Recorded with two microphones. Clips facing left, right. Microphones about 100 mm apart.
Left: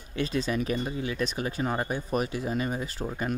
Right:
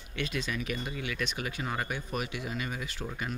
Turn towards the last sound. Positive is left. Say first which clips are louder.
# left 6 dB
turn(degrees=35)  # may be behind; listen again after turning